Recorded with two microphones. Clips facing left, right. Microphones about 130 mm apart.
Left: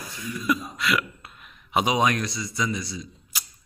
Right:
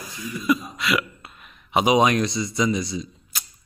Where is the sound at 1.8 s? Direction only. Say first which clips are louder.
Right 7 dB; 20° right (ahead or behind).